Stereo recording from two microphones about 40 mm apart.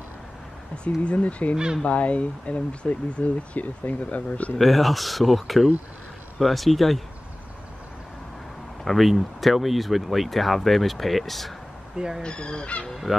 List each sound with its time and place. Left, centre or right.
0.8 s speech: left
4.6 s speech: centre
8.8 s speech: centre
12.2 s speech: left